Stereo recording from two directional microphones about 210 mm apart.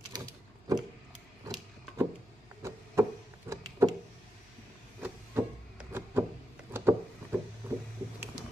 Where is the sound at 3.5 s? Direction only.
15° right (ahead or behind).